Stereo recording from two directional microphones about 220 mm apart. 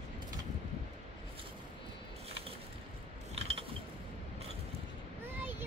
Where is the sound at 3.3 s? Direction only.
25° right (ahead or behind).